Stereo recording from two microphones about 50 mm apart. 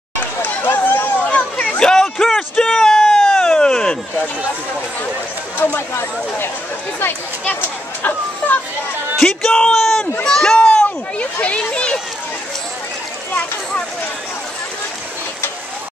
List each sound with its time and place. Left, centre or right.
0.4 s run: left
1.3 s a sound: left
1.9 s a sound: centre
5.6 s speech: left
8.0 s chatter: left
9.2 s a man's voice: centre
10.2 s children playing: centre